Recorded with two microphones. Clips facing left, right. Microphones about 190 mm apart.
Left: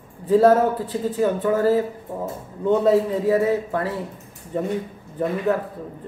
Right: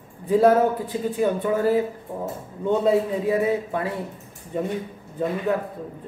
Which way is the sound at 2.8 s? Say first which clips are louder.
Left 2 dB; 15° right (ahead or behind).